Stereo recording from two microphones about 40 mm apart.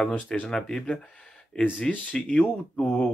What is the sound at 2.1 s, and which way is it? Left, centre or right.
Speech, left.